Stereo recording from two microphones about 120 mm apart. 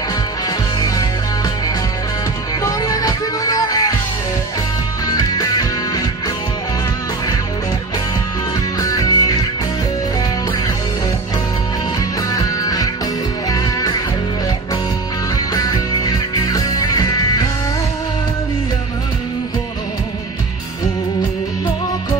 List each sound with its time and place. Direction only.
0.7 s music: 30° left (ahead or behind)
2.6 s music: 30° left (ahead or behind)
5.0 s music: 35° left (ahead or behind)
8.7 s music: 30° left (ahead or behind)
12.3 s music: 30° left (ahead or behind)
15.3 s music: 30° left (ahead or behind)